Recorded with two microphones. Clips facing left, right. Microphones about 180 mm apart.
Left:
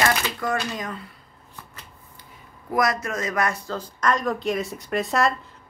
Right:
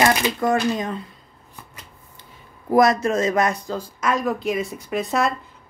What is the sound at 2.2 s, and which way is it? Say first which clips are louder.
Speech: right 1 dB; 25° right (ahead or behind).